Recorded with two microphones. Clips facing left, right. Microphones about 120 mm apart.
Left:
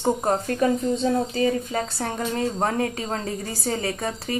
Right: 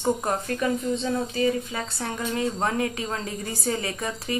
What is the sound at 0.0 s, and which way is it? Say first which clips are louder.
Speech: left 3 dB; 30° left (ahead or behind).